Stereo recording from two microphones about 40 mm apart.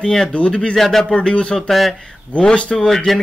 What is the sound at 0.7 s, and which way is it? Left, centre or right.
Speech, centre.